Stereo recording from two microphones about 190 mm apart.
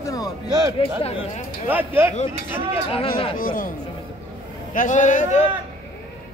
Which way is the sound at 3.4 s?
50° left (ahead or behind).